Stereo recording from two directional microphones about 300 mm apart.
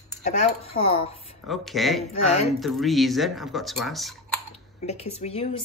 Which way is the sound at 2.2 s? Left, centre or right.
Left.